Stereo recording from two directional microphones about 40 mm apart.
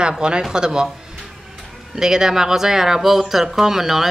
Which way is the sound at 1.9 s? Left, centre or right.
Centre.